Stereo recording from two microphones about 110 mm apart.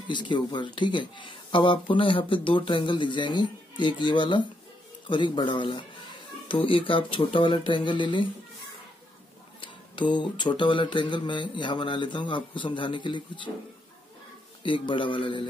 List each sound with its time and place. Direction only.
0.1 s speech: 45° left (ahead or behind)
9.6 s speech: 45° left (ahead or behind)
14.6 s speech: 50° left (ahead or behind)